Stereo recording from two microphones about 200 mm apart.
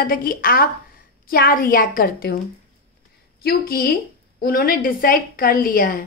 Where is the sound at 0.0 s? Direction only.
45° left (ahead or behind).